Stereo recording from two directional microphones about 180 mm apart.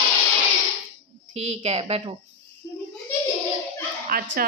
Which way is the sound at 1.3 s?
40° right (ahead or behind).